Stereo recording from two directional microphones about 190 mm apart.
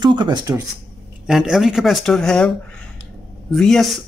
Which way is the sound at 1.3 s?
Centre (ahead or behind).